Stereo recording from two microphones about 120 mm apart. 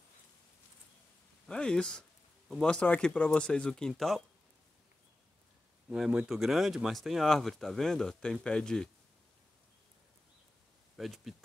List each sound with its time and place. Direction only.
1.5 s speech: 5° left (ahead or behind)
5.9 s speech: 5° right (ahead or behind)
11.0 s speech: centre (ahead or behind)